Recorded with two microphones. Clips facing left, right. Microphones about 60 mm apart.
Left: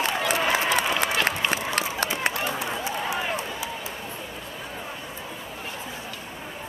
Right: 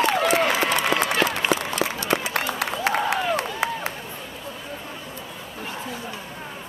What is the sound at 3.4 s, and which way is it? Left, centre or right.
Run, right.